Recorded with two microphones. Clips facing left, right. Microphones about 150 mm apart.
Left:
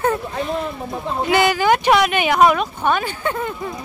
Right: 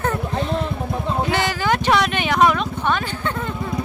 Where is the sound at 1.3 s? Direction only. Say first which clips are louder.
Left 8 dB; 15° left (ahead or behind).